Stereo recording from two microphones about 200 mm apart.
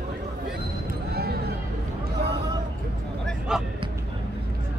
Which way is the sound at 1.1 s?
50° right (ahead or behind).